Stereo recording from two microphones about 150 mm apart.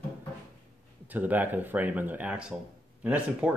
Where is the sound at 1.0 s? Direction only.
10° right (ahead or behind).